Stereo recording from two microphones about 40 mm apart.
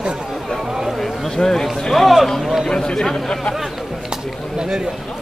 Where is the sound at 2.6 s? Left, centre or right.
Centre.